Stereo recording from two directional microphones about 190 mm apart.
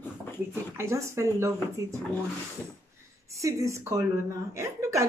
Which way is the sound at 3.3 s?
15° right (ahead or behind).